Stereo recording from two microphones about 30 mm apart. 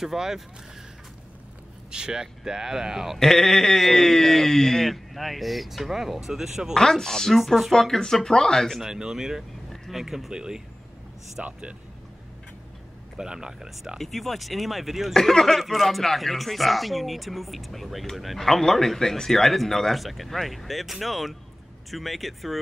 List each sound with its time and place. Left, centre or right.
0.0 s speech: centre
1.9 s speech: right
3.2 s speech: centre
7.0 s speech: centre
7.3 s speech: centre
7.9 s speech: centre
8.8 s speech: centre
10.3 s speech: right
13.2 s speech: right
13.9 s speech: centre
18.4 s speech: centre